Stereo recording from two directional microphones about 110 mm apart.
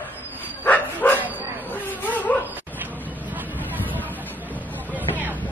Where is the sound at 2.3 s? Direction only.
15° left (ahead or behind).